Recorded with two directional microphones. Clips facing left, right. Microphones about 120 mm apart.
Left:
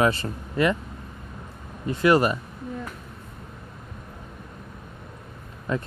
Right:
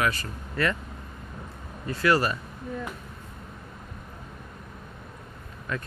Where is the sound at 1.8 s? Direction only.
20° left (ahead or behind).